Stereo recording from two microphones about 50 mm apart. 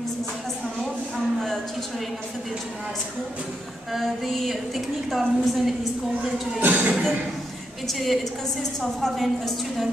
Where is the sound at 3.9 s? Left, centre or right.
Centre.